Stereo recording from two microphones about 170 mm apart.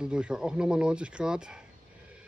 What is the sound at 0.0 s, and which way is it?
Speech, 5° right (ahead or behind).